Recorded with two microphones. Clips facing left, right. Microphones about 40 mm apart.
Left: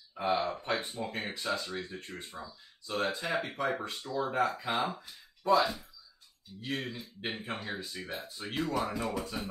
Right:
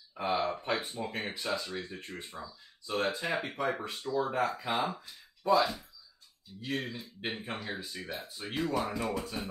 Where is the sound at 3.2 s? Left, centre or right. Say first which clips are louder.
Even; centre.